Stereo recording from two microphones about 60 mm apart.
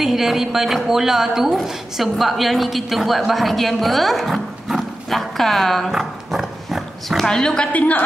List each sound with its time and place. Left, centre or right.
0.0 s a woman's voice: centre
7.2 s a woman's voice: centre